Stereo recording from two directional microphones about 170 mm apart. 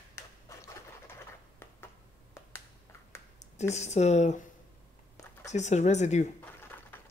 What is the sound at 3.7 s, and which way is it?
Speech, 40° left (ahead or behind).